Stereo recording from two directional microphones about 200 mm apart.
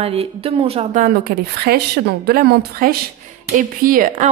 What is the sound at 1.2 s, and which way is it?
A woman's voice, 50° right (ahead or behind).